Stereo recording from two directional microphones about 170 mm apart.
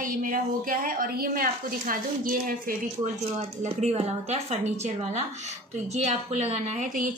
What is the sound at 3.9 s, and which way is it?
A woman's voice, 40° right (ahead or behind).